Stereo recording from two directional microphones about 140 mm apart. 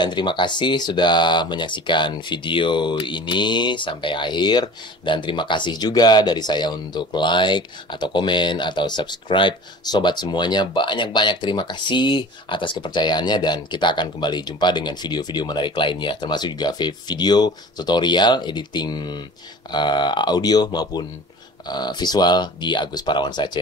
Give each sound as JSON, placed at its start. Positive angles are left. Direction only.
{"t": 0.0, "sound": "speech", "side_deg": 30}